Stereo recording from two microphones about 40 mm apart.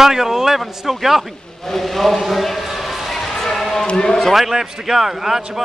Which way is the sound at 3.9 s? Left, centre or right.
Centre.